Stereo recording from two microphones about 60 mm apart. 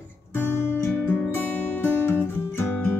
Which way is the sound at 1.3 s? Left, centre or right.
Left.